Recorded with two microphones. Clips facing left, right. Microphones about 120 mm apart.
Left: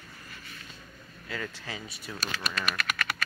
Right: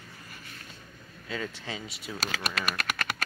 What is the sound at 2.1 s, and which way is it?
Speech, 90° right.